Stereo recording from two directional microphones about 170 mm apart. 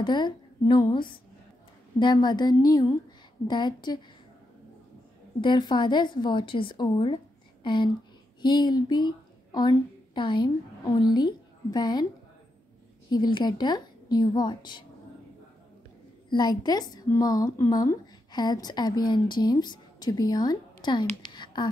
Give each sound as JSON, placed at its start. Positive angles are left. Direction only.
{"t": 0.0, "sound": "a woman's voice", "side_deg": 25}
{"t": 5.4, "sound": "a woman's voice", "side_deg": 25}
{"t": 13.1, "sound": "a woman's voice", "side_deg": 25}
{"t": 16.3, "sound": "a woman's voice", "side_deg": 25}
{"t": 21.2, "sound": "a sound", "side_deg": 25}